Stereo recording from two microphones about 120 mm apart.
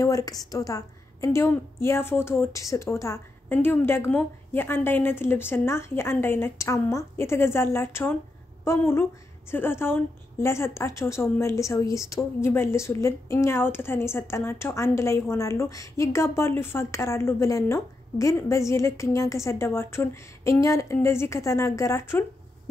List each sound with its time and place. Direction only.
0.0 s a woman's voice: 30° left (ahead or behind)